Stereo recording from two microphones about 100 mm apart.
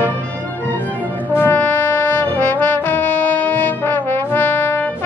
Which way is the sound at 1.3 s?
20° left (ahead or behind).